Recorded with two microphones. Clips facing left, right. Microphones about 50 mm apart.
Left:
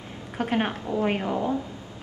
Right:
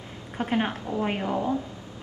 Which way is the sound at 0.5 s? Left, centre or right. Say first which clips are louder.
Even; centre.